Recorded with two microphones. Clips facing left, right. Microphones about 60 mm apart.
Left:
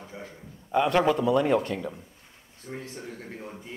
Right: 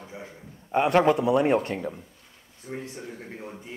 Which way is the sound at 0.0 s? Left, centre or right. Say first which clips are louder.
Right 1 dB; centre.